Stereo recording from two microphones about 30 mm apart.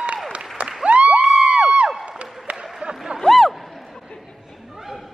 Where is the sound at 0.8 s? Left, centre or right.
Right.